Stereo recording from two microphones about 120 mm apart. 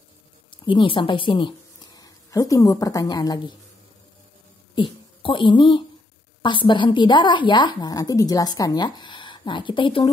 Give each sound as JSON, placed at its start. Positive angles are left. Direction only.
{"t": 0.5, "sound": "speech", "side_deg": 45}
{"t": 1.9, "sound": "a woman's voice", "side_deg": 30}
{"t": 4.7, "sound": "a woman's voice", "side_deg": 45}